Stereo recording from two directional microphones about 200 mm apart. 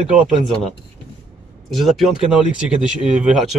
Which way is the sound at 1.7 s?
Centre (ahead or behind).